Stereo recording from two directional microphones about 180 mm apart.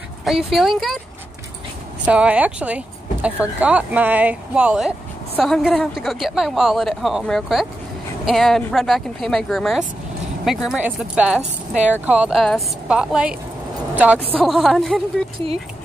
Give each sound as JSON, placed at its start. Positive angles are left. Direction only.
{"t": 0.5, "sound": "speech", "side_deg": 0}
{"t": 2.0, "sound": "speech", "side_deg": -5}
{"t": 15.3, "sound": "speech", "side_deg": -30}